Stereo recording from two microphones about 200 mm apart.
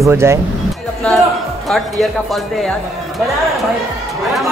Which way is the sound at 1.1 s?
Centre (ahead or behind).